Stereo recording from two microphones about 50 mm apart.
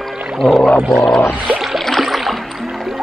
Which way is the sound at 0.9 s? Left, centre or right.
Centre.